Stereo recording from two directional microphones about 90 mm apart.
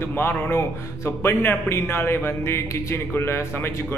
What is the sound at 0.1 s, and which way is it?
A man's voice, 25° left (ahead or behind).